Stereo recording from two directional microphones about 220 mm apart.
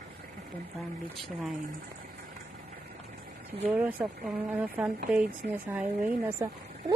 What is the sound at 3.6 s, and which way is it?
Speech, 5° right (ahead or behind).